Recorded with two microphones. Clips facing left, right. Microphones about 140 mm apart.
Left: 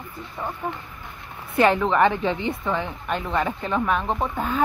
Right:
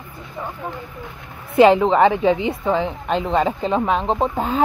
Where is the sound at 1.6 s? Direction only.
20° right (ahead or behind).